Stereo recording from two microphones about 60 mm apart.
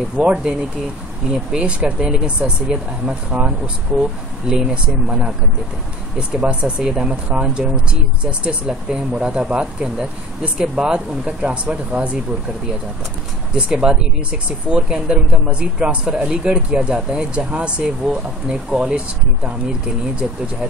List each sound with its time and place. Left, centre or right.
0.2 s speech: centre
13.6 s speech: centre